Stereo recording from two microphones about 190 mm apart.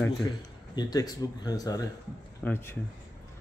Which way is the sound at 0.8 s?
20° left (ahead or behind).